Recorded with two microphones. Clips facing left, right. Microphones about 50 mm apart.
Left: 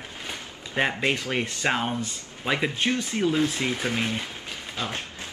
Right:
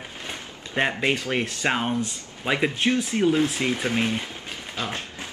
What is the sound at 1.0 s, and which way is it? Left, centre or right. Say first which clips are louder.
Speech: right 2 dB; centre.